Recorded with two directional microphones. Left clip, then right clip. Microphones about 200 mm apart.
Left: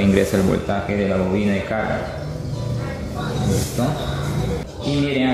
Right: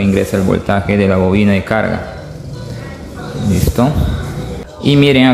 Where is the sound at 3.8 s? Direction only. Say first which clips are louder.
Right 10 dB; 35° right (ahead or behind).